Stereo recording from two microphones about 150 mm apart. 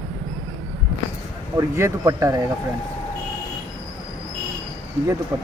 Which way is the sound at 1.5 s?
15° right (ahead or behind).